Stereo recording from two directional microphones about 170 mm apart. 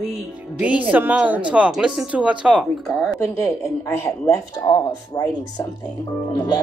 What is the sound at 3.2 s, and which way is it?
Speech, 15° left (ahead or behind).